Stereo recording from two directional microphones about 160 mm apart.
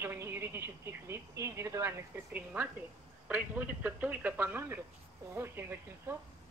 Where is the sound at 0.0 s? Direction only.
15° right (ahead or behind).